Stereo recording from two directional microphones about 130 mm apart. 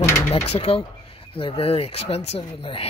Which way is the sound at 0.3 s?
50° left (ahead or behind).